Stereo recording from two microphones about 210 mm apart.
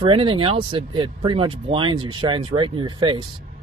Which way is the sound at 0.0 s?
25° right (ahead or behind).